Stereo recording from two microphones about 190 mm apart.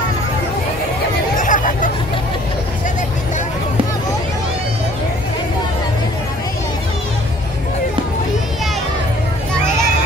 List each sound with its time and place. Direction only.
1.3 s hubbub: 45° left (ahead or behind)